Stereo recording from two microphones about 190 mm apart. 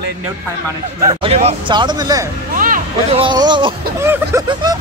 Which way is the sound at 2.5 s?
45° right (ahead or behind).